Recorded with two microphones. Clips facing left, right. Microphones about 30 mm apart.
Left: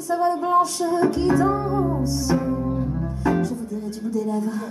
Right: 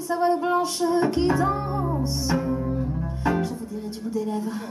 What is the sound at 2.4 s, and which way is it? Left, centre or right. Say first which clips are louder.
Cello: left 2 dB; centre.